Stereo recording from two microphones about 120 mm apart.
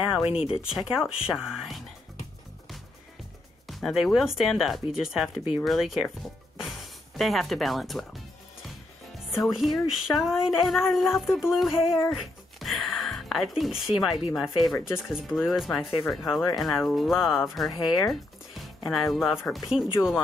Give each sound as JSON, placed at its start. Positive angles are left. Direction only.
{"t": 0.1, "sound": "a sound", "side_deg": 50}
{"t": 0.6, "sound": "speech", "side_deg": -5}
{"t": 3.6, "sound": "speech", "side_deg": 0}
{"t": 6.6, "sound": "music", "side_deg": 0}
{"t": 9.3, "sound": "speech", "side_deg": 0}
{"t": 12.1, "sound": "music", "side_deg": 0}
{"t": 14.3, "sound": "speech", "side_deg": 0}